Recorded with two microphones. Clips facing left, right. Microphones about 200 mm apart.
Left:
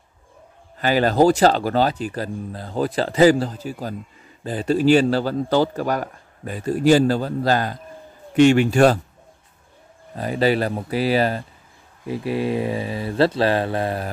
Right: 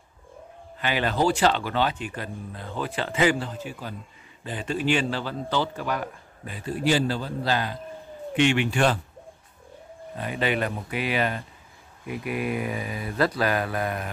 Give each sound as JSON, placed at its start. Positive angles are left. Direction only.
{"t": 0.7, "sound": "a man's voice", "side_deg": 40}
{"t": 10.1, "sound": "speech", "side_deg": 35}